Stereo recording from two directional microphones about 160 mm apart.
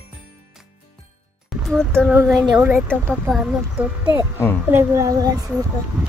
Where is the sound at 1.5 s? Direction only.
Centre (ahead or behind).